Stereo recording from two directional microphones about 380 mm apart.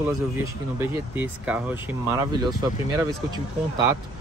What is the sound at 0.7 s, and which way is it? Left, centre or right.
Speech, centre.